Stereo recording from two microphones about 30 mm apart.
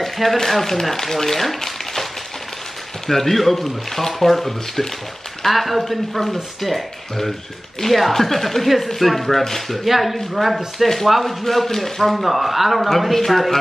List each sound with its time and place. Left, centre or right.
0.0 s speech: centre
3.1 s speech: centre
11.4 s speech: centre